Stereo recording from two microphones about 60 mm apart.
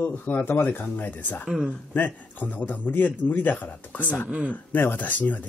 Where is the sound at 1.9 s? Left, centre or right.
Left.